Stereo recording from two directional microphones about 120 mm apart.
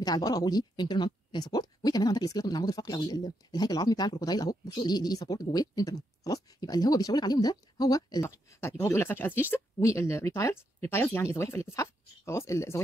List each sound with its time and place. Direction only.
0.0 s speech: 35° left (ahead or behind)